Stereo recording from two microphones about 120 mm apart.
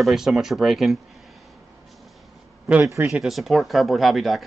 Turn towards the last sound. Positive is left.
turn(degrees=0)  # may be behind; listen again after turning